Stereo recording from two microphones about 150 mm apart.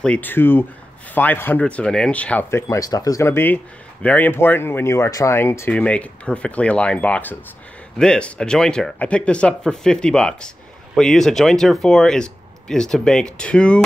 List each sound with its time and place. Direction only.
0.0 s speech: 10° left (ahead or behind)
2.7 s speech: 25° left (ahead or behind); by 13.7 s 5° left (ahead or behind)